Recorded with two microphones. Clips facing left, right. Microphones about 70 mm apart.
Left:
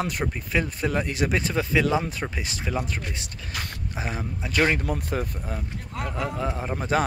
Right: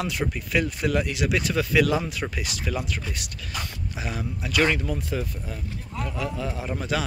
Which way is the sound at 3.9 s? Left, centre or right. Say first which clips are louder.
Left 1 dB; left.